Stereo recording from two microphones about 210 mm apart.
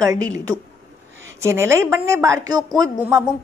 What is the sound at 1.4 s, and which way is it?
A woman's voice, 15° right (ahead or behind).